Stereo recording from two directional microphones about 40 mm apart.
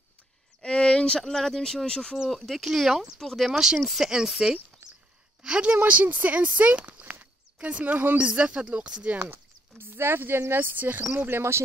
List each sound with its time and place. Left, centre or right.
0.6 s speech: left
1.2 s speech: centre
2.3 s speech: centre
2.6 s speech: centre
3.2 s speech: centre
3.4 s speech: centre
3.8 s speech: centre
4.1 s a woman's voice: centre
5.9 s speech: right
6.6 s a sound: right
8.4 s speech: right
9.3 s speech: right